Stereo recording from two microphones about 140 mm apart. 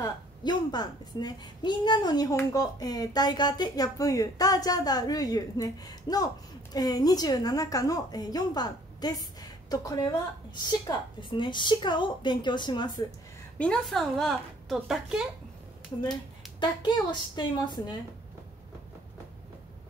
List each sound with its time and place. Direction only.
0.0 s a woman's voice: 30° left (ahead or behind)
13.6 s a woman's voice: 5° left (ahead or behind)
16.5 s a woman's voice: 35° left (ahead or behind)